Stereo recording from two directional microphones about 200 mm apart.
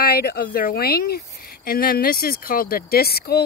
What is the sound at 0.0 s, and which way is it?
Speech, 50° left (ahead or behind).